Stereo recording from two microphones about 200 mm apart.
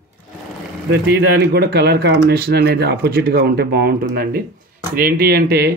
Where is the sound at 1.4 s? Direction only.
50° right (ahead or behind).